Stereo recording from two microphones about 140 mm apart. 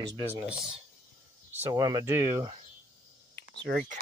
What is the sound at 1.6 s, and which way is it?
Speech, 25° right (ahead or behind).